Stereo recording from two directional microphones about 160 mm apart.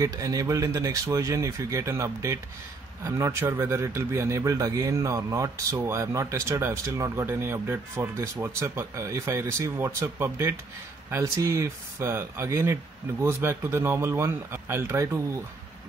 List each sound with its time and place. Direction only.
0.0 s speech: 20° right (ahead or behind)